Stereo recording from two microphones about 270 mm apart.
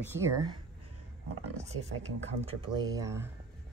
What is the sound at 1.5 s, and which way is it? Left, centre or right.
Speech, right.